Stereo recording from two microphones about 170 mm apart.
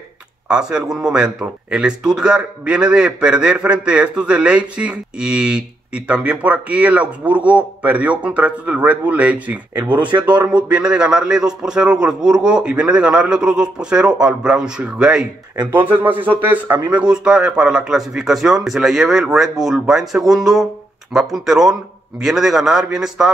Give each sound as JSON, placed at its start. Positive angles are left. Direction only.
{"t": 0.5, "sound": "speech", "side_deg": -5}
{"t": 15.6, "sound": "speech", "side_deg": -25}
{"t": 16.1, "sound": "speech", "side_deg": -10}